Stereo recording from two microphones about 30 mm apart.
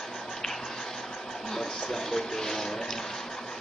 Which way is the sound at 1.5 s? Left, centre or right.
Centre.